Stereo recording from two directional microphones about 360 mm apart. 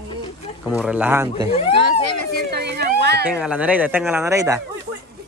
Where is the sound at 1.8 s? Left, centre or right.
Right.